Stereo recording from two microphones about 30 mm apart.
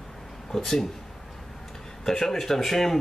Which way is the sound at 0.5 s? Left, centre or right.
Centre.